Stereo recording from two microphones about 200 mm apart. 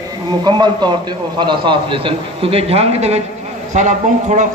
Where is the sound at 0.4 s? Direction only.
20° right (ahead or behind).